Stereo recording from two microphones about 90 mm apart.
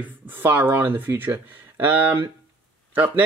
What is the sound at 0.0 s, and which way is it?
Speech, 20° right (ahead or behind).